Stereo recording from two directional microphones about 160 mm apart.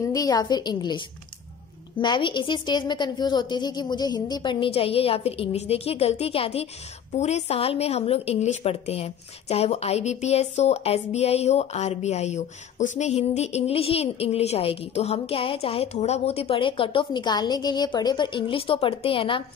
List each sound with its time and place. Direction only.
0.0 s a woman's voice: 20° left (ahead or behind)